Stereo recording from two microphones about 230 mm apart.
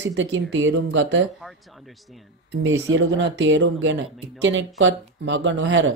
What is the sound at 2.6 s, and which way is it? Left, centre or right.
Speech, right.